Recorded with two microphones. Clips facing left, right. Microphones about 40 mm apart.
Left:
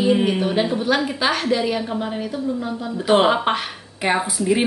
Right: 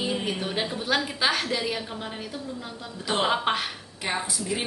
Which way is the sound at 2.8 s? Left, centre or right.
Left.